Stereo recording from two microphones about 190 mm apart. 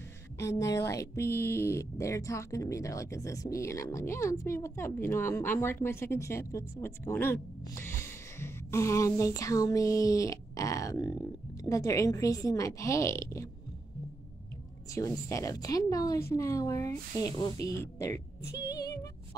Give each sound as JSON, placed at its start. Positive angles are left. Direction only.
{"t": 0.4, "sound": "speech", "side_deg": 15}
{"t": 15.0, "sound": "speech", "side_deg": 15}
{"t": 18.7, "sound": "music", "side_deg": 20}